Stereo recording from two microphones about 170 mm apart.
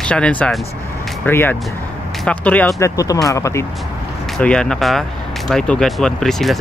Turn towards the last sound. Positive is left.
turn(degrees=0)  # may be behind; listen again after turning